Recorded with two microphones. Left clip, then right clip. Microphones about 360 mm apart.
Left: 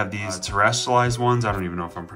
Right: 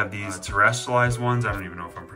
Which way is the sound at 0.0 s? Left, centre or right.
Centre.